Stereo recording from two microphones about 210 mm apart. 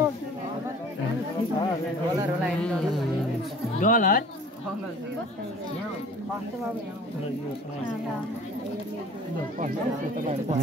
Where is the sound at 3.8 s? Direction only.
40° left (ahead or behind).